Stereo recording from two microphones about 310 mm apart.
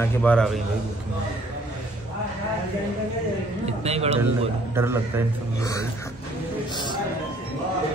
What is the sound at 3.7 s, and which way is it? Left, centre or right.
Speech, centre.